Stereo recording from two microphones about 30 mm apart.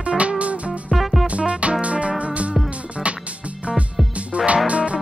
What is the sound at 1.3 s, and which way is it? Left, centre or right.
Music, right.